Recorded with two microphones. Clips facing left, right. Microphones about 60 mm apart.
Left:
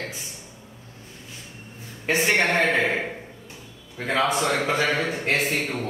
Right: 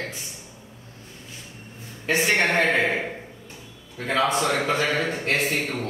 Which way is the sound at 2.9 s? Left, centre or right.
Centre.